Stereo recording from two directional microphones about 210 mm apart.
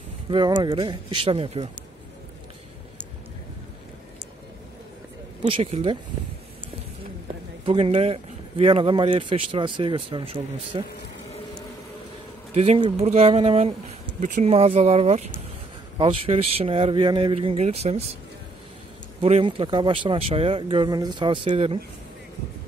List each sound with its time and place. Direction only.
0.3 s speech: 20° right (ahead or behind)
5.4 s speech: 30° right (ahead or behind)
7.6 s speech: 25° right (ahead or behind)
12.5 s speech: 30° right (ahead or behind)
19.2 s speech: 30° right (ahead or behind)